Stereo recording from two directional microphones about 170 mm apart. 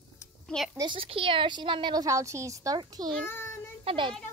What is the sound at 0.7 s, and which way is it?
A woman's voice, 30° right (ahead or behind).